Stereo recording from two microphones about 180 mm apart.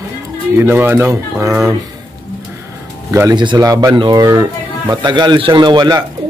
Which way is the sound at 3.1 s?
20° right (ahead or behind).